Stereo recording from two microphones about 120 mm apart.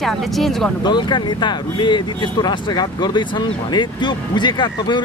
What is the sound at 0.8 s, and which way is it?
Speech, 40° left (ahead or behind).